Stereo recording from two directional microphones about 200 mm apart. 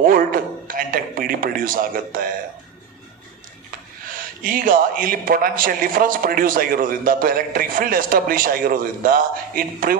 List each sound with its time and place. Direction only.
0.0 s a man's voice: 45° right (ahead or behind)
4.1 s a man's voice: 45° right (ahead or behind)